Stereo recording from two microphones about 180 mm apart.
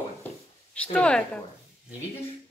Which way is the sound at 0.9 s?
5° left (ahead or behind).